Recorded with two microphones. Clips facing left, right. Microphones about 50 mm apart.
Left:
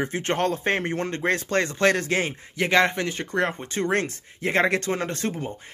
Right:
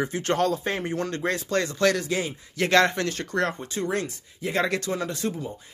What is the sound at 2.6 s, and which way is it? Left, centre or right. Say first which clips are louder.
Speech: even; centre.